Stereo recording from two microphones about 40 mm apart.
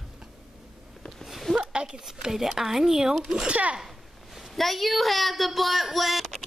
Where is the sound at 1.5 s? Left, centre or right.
Right.